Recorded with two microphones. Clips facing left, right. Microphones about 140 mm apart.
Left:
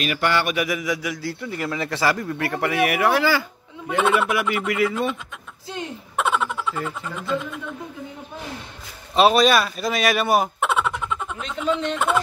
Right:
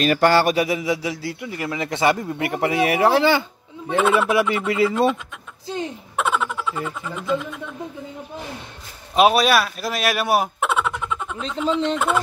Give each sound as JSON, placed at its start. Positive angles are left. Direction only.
{"t": 0.0, "sound": "a sound", "side_deg": -40}
{"t": 0.7, "sound": "speech", "side_deg": -25}
{"t": 3.9, "sound": "speech", "side_deg": 0}
{"t": 4.3, "sound": "speech", "side_deg": -30}
{"t": 6.1, "sound": "speech", "side_deg": 0}
{"t": 9.1, "sound": "speech", "side_deg": -10}